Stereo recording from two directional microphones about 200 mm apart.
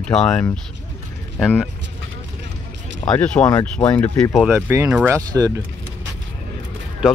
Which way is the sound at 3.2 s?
5° left (ahead or behind).